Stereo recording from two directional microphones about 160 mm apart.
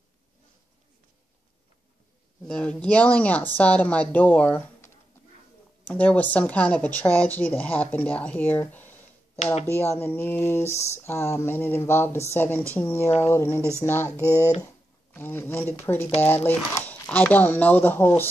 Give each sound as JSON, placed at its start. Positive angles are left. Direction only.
{"t": 2.4, "sound": "speech", "side_deg": 5}
{"t": 13.6, "sound": "speech", "side_deg": -15}
{"t": 13.8, "sound": "speech", "side_deg": 15}
{"t": 14.1, "sound": "speech", "side_deg": -15}
{"t": 15.1, "sound": "speech", "side_deg": 10}